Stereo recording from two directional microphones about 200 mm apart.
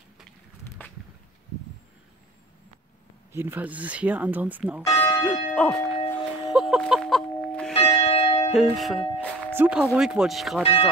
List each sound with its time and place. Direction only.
3.3 s speech: 10° right (ahead or behind)
4.8 s church bell: 10° left (ahead or behind)
7.7 s church bell: 30° left (ahead or behind)
8.5 s speech: centre (ahead or behind)
10.6 s speech: 25° left (ahead or behind)